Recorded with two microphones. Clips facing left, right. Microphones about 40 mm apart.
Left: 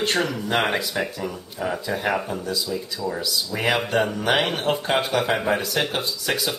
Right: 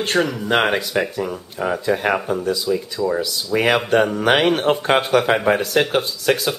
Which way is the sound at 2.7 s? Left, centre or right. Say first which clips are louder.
Right 7 dB; right.